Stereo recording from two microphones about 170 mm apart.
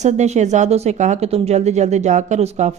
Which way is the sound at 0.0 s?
45° right (ahead or behind).